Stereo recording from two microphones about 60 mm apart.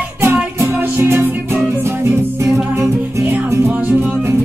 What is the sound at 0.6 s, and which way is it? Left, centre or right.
Music, right.